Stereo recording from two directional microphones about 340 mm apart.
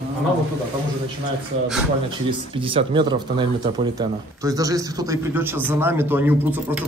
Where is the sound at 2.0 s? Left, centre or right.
Centre.